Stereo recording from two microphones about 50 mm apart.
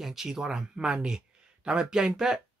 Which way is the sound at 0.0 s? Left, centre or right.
Centre.